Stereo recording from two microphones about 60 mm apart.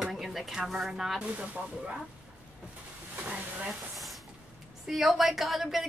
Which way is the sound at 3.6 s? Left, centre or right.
Centre.